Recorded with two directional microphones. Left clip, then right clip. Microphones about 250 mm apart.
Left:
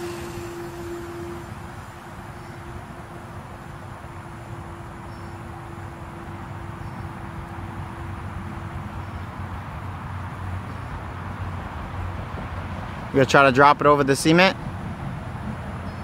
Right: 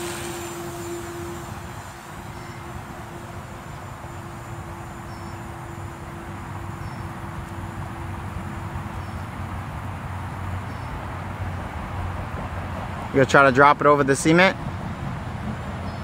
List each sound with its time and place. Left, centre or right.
13.1 s speech: centre